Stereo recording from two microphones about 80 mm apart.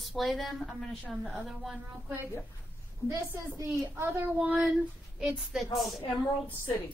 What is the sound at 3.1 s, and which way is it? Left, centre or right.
Speech, right.